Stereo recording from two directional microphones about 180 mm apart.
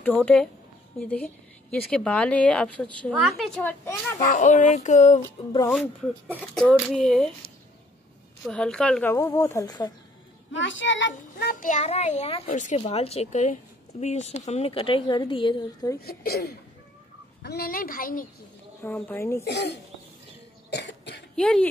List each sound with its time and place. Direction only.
0.0 s speech: 5° left (ahead or behind)
3.8 s speech: 15° left (ahead or behind)
4.3 s a sound: 45° left (ahead or behind)
6.4 s speech: 5° left (ahead or behind)
8.5 s speech: 5° left (ahead or behind)
9.1 s speech: 15° left (ahead or behind)
10.5 s a child's voice: 90° left; by 11.7 s 65° left (ahead or behind)
11.7 s a woman's voice: 40° left (ahead or behind)
16.0 s speech: 60° left (ahead or behind)
17.4 s a sound: 60° left (ahead or behind)
18.8 s speech: 10° left (ahead or behind)
19.4 s speech: 70° left (ahead or behind)
20.7 s cough: 75° left (ahead or behind)
21.4 s speech: 5° left (ahead or behind)